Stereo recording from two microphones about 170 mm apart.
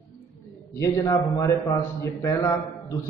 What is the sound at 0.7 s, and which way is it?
A man's voice, 20° left (ahead or behind).